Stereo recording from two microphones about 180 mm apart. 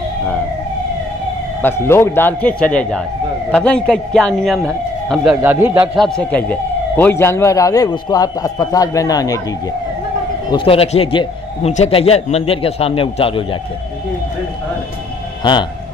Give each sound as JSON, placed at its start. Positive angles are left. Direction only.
{"t": 1.6, "sound": "a man's voice", "side_deg": 15}
{"t": 5.9, "sound": "speech", "side_deg": 5}
{"t": 10.5, "sound": "a man's voice", "side_deg": 30}